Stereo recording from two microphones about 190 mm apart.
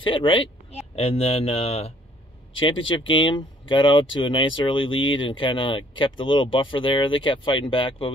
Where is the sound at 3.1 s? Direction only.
25° left (ahead or behind).